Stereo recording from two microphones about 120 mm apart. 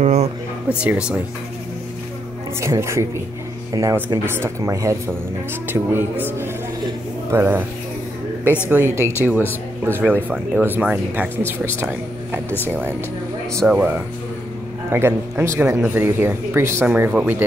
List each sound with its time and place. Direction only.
0.0 s a sound: 70° right (ahead or behind)
0.7 s speech: 10° right (ahead or behind)
2.6 s speech: 25° right (ahead or behind)
8.6 s speech: 20° right (ahead or behind)